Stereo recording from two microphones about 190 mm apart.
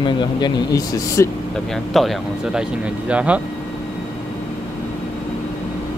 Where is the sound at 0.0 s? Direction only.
25° left (ahead or behind).